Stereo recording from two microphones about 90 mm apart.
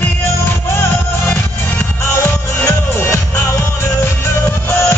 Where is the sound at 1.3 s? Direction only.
20° left (ahead or behind).